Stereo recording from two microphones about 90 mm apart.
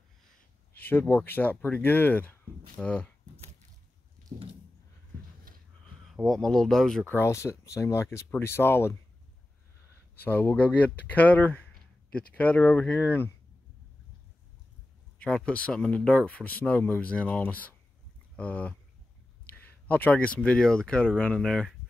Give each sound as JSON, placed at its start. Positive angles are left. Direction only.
{"t": 0.7, "sound": "speech", "side_deg": 25}
{"t": 6.2, "sound": "speech", "side_deg": 5}
{"t": 7.1, "sound": "speech", "side_deg": 30}
{"t": 10.1, "sound": "speech", "side_deg": 20}
{"t": 15.1, "sound": "speech", "side_deg": 10}